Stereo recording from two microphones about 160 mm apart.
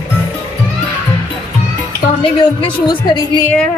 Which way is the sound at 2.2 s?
35° left (ahead or behind).